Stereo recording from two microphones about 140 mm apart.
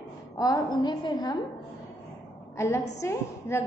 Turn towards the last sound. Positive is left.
turn(degrees=20)  # may be behind; listen again after turning